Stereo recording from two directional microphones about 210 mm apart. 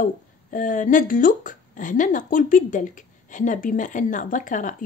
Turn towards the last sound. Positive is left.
turn(degrees=40)  # may be behind; listen again after turning